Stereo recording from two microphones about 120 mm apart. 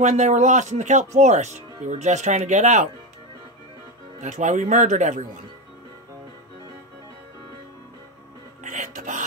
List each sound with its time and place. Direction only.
0.0 s speech: 80° right
4.2 s speech: 90° right
8.6 s speech: 90° right